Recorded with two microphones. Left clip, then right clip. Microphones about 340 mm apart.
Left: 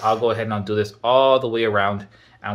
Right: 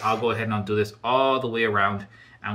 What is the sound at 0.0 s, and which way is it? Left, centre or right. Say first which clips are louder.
Speech: left 4 dB; centre.